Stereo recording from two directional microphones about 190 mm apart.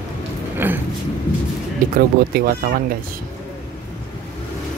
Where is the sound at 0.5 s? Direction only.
10° right (ahead or behind).